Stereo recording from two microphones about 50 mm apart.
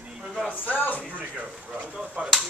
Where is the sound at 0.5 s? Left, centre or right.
Left.